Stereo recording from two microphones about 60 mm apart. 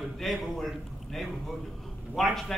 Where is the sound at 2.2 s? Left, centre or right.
Centre.